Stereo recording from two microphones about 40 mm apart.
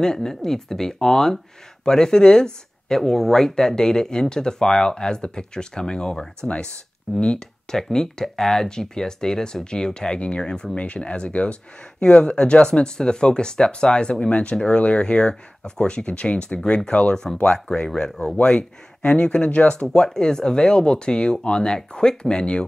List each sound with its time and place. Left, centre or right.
0.0 s speech: centre
3.0 s speech: centre; by 7.4 s left
7.7 s speech: centre
10.8 s speech: left